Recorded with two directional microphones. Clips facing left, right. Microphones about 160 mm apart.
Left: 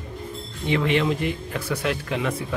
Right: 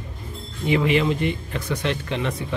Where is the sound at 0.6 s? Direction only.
5° right (ahead or behind).